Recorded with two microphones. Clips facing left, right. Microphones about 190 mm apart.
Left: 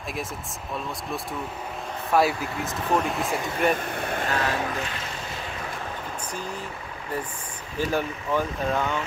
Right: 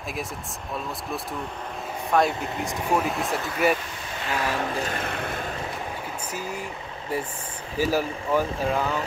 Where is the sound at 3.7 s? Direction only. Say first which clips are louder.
Left 2 dB; 55° left (ahead or behind).